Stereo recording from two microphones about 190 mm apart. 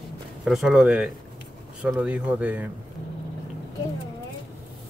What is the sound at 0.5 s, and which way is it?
Speech, centre (ahead or behind).